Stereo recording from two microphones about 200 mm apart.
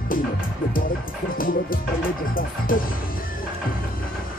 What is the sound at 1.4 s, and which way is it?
Music, 45° left (ahead or behind).